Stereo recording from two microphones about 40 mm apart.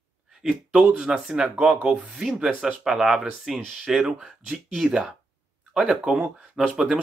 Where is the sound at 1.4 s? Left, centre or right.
Centre.